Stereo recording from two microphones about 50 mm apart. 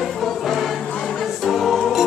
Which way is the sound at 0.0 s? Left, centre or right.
Centre.